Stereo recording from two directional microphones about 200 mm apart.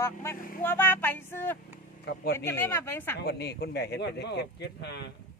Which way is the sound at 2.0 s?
55° left (ahead or behind).